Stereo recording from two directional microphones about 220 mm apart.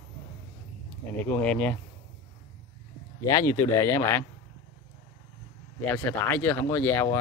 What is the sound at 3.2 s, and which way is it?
Speech, 15° left (ahead or behind).